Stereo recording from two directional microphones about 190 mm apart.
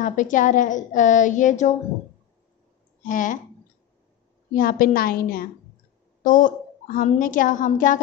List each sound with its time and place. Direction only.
0.0 s speech: 40° left (ahead or behind)
3.0 s speech: 45° left (ahead or behind)
4.6 s a woman's voice: 50° left (ahead or behind)